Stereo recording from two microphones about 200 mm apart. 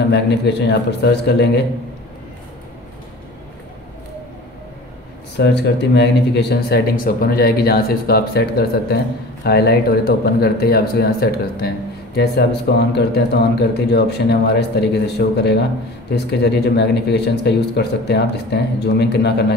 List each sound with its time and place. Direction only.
0.1 s speech: 60° left (ahead or behind)
5.4 s speech: 60° left (ahead or behind)